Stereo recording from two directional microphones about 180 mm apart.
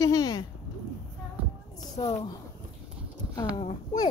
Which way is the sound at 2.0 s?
35° left (ahead or behind).